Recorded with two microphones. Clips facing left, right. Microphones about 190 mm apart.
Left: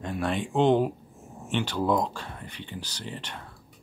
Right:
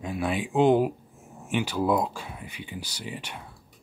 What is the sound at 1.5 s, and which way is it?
Speech, 10° right (ahead or behind).